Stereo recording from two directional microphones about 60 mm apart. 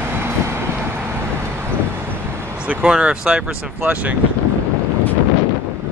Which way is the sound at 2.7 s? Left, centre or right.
Right.